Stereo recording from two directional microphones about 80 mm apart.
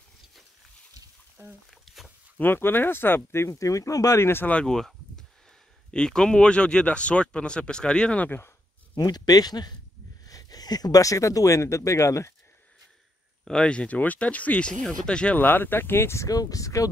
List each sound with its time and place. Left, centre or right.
1.7 s a sound: centre
2.3 s speech: left
4.2 s speech: left
4.5 s speech: centre
8.9 s speech: left
13.5 s speech: centre
15.4 s speech: left
16.3 s speech: left